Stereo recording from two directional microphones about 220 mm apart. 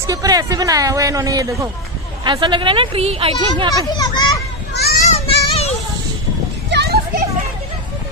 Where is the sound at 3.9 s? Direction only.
20° left (ahead or behind).